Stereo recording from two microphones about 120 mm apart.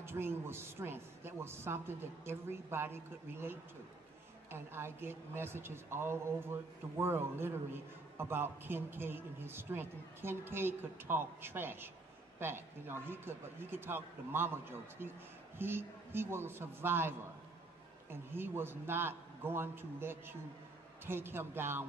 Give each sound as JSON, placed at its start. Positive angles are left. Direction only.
{"t": 0.0, "sound": "a woman's voice", "side_deg": -20}
{"t": 18.1, "sound": "a woman's voice", "side_deg": -20}